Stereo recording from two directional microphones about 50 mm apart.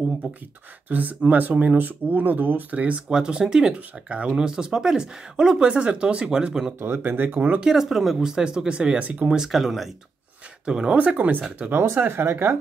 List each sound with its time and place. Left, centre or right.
0.2 s speech: right
0.8 s speech: right
3.1 s speech: centre
7.0 s speech: right
7.6 s speech: centre
9.6 s speech: centre
10.6 s speech: centre
11.0 s speech: right
11.8 s speech: right